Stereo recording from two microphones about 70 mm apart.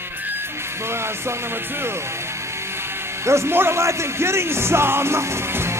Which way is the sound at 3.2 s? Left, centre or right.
Right.